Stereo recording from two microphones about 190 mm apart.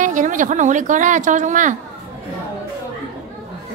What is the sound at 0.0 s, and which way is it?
Speech, 40° right (ahead or behind).